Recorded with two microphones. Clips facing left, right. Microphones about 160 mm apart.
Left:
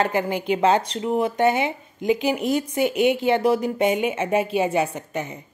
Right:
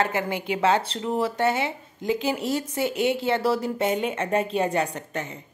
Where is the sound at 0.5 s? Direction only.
20° left (ahead or behind).